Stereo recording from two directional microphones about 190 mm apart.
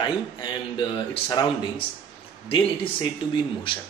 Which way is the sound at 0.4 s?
25° left (ahead or behind).